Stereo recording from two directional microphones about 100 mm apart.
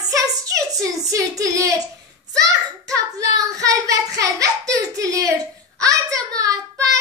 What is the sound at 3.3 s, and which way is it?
Child singing, 35° right (ahead or behind).